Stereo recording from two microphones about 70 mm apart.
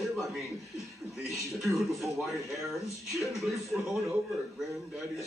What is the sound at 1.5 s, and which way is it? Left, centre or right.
Speech, centre.